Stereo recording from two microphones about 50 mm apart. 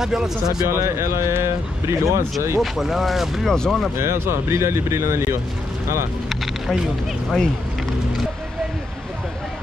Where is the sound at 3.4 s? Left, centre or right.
Centre.